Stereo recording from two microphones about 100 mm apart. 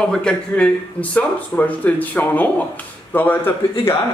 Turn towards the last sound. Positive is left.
turn(degrees=20)  # may be behind; listen again after turning